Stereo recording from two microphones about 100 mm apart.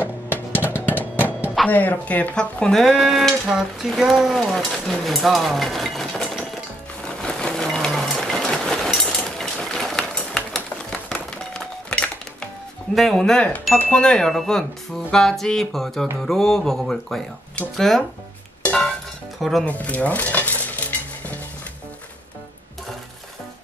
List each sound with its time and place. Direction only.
0.6 s music: 20° left (ahead or behind)
1.7 s speech: 15° left (ahead or behind)
7.1 s a sound: 5° left (ahead or behind)
12.9 s speech: centre (ahead or behind)
13.7 s chime: 10° left (ahead or behind)
15.0 s speech: 5° left (ahead or behind)
18.6 s a sound: 10° left (ahead or behind)
19.6 s dishes: 15° left (ahead or behind)